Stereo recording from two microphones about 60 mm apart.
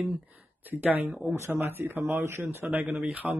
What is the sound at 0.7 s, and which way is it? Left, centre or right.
Speech, right.